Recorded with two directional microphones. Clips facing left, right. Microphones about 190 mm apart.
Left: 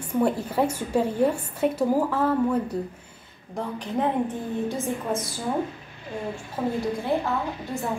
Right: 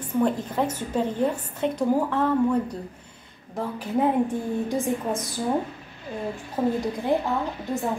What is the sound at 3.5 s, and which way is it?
A woman's voice, 5° right (ahead or behind).